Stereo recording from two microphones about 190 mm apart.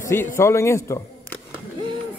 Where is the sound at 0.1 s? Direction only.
15° left (ahead or behind).